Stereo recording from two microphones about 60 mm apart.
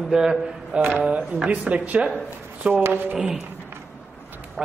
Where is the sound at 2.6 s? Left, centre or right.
Right.